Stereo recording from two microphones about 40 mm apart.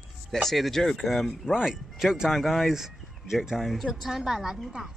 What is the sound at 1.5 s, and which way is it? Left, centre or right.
Speech, centre.